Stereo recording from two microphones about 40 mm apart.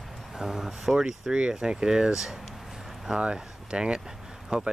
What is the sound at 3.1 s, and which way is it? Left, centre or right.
Speech, right.